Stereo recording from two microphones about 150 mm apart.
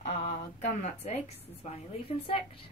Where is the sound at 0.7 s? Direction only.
45° left (ahead or behind).